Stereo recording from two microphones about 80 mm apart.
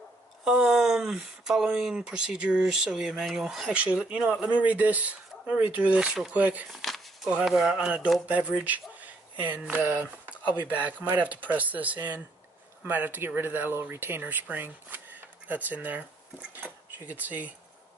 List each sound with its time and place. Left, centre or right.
0.5 s speech: centre
3.7 s speech: centre
6.7 s a sound: centre
7.2 s speech: centre